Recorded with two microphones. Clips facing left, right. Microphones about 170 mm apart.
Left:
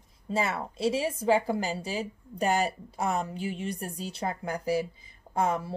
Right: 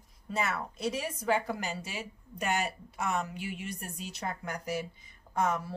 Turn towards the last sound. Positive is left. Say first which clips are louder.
# left 3 dB
turn(degrees=30)  # may be behind; listen again after turning